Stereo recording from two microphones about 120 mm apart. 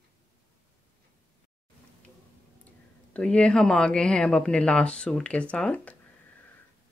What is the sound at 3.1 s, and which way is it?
Speech, 10° left (ahead or behind).